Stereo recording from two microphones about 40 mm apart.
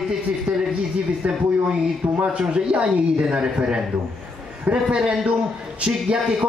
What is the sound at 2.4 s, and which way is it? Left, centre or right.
A woman's voice, right.